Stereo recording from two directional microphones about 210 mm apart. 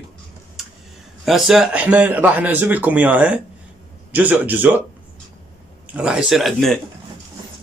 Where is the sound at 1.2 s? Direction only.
Centre (ahead or behind).